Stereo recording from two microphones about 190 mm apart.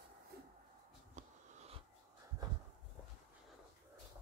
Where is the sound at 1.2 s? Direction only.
40° right (ahead or behind).